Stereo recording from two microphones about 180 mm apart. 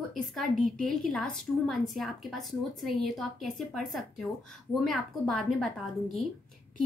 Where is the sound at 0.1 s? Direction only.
Centre (ahead or behind).